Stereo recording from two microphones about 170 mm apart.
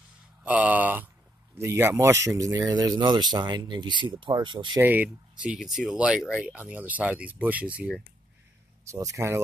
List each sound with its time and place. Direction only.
0.4 s a sound: 10° right (ahead or behind)
1.6 s speech: 15° right (ahead or behind)
4.7 s speech: 10° right (ahead or behind)
8.8 s speech: 15° right (ahead or behind)